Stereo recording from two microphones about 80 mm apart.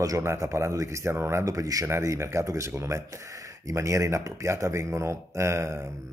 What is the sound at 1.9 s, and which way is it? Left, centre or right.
Speech, right.